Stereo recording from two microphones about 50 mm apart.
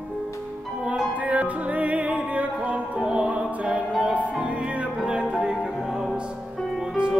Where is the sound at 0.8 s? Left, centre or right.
Right.